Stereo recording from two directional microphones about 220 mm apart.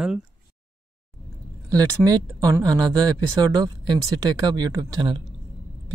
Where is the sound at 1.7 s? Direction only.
15° right (ahead or behind).